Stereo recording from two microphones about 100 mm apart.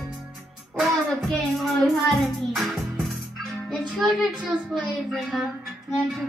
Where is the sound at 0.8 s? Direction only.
Centre (ahead or behind).